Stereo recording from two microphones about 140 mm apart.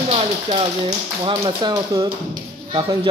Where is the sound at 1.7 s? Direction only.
25° right (ahead or behind).